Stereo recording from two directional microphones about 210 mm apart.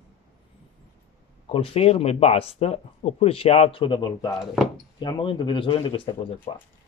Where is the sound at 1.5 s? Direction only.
25° left (ahead or behind).